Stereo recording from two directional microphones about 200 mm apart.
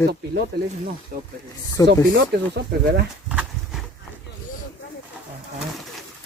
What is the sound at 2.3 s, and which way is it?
Speech, 55° right (ahead or behind).